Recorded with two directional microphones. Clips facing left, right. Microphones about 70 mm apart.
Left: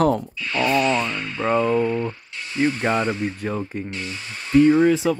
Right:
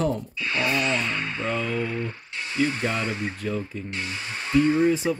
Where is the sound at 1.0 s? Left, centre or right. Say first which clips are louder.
Left 1 dB; centre.